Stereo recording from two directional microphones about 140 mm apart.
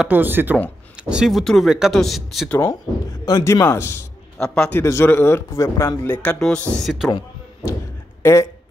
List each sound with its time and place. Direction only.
0.0 s speech: 15° right (ahead or behind)
3.3 s a man's voice: 25° left (ahead or behind)
6.1 s a man's voice: 10° left (ahead or behind)
8.2 s speech: 20° left (ahead or behind)